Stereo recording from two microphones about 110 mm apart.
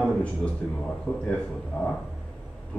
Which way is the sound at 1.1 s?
10° left (ahead or behind).